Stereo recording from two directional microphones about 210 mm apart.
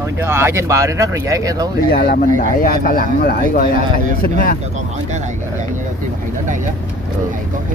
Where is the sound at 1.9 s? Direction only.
45° left (ahead or behind).